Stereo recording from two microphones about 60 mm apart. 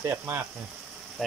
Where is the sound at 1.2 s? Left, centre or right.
Centre.